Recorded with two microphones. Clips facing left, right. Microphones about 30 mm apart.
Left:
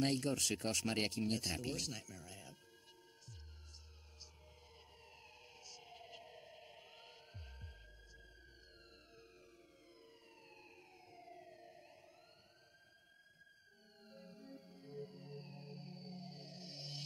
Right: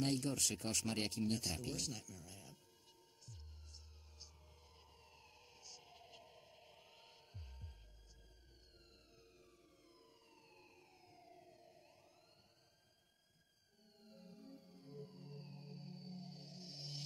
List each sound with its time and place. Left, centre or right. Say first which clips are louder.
0.0 s speech: left 2 dB; centre
4.7 s a sound: left 4 dB; left
9.9 s emergency vehicle: left 4 dB; left
14.0 s music: left 2 dB; left